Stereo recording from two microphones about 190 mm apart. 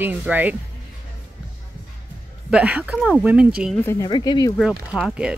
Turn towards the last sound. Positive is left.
turn(degrees=-5)  # may be behind; listen again after turning